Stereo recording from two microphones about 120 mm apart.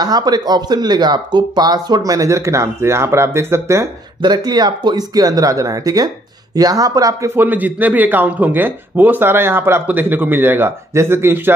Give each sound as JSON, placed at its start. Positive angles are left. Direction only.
{"t": 0.0, "sound": "speech", "side_deg": -35}
{"t": 4.2, "sound": "a man's voice", "side_deg": -35}